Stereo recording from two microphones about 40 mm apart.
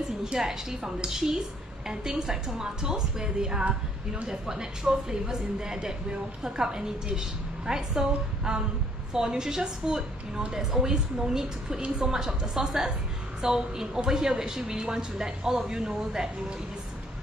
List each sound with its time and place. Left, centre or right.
0.2 s a woman's voice: centre